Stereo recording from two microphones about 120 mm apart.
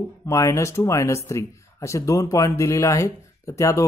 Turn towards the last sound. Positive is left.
turn(degrees=25)  # may be behind; listen again after turning